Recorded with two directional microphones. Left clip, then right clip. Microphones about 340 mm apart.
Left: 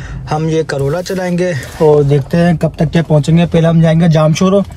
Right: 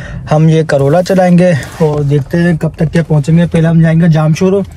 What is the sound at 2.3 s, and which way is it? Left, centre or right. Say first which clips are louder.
Speech: left 1 dB; centre.